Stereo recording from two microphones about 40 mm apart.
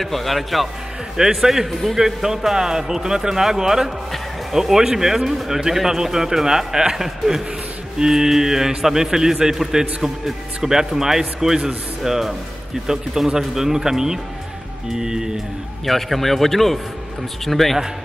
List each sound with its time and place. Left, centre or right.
0.0 s a man's voice: centre
1.1 s speech: centre
1.7 s a man's voice: centre
2.0 s speech: centre
15.8 s a man's voice: centre